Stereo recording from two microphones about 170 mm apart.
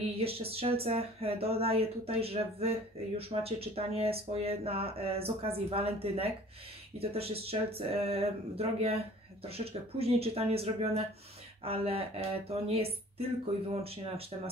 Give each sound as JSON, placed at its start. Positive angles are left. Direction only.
{"t": 0.2, "sound": "speech", "side_deg": -35}
{"t": 13.8, "sound": "speech", "side_deg": -35}